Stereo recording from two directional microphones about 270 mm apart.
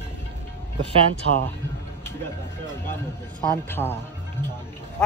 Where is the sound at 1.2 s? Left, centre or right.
Right.